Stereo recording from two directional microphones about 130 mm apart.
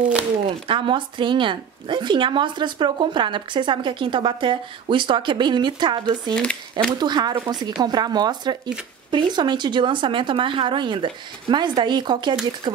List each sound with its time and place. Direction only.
0.5 s speech: 40° right (ahead or behind)